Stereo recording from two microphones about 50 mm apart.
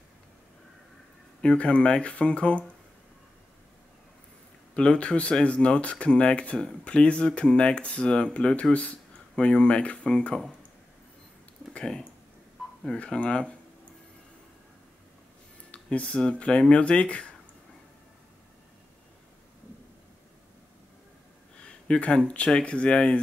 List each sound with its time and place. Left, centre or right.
1.4 s speech: left
4.7 s speech: left
8.7 s a sound: left
9.4 s speech: left
12.8 s speech: centre
15.7 s a sound: left
16.2 s speech: left
21.5 s speech: centre